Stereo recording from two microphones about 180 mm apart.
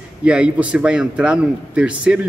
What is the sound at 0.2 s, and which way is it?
A man's voice, 5° right (ahead or behind).